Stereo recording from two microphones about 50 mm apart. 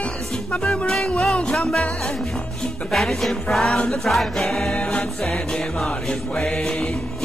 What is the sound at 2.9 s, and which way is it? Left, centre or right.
Music, centre.